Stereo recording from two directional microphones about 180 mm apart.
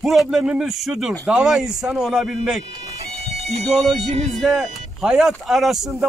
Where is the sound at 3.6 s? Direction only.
Centre (ahead or behind).